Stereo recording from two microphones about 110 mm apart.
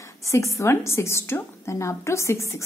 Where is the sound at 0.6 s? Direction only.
25° left (ahead or behind).